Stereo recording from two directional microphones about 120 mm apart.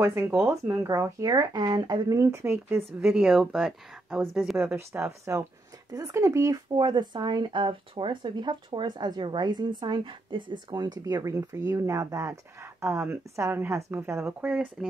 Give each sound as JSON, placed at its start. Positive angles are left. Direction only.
{"t": 0.0, "sound": "speech", "side_deg": -20}
{"t": 2.8, "sound": "speech", "side_deg": -5}
{"t": 4.6, "sound": "speech", "side_deg": -20}
{"t": 14.5, "sound": "speech", "side_deg": -10}